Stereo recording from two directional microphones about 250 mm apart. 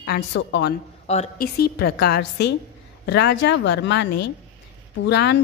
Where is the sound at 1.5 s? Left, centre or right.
Left.